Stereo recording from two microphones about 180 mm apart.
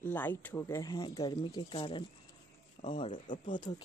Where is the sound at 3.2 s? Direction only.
45° left (ahead or behind).